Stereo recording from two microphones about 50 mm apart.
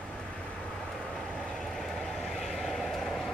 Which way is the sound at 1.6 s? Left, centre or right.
Centre.